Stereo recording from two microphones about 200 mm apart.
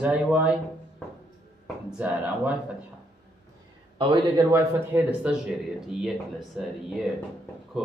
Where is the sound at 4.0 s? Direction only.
25° right (ahead or behind).